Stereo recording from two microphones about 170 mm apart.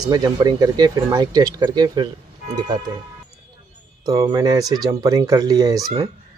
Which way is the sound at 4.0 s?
20° right (ahead or behind).